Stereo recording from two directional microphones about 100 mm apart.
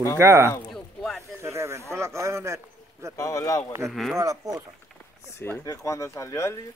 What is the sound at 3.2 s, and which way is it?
Speech, 35° left (ahead or behind).